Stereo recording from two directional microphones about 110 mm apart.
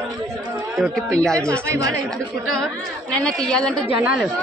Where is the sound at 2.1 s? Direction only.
5° left (ahead or behind).